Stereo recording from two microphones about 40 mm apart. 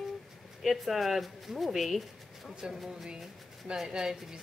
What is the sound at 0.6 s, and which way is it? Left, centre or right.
Speech, centre.